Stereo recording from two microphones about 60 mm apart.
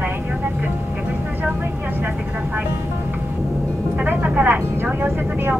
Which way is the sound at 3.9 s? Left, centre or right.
Right.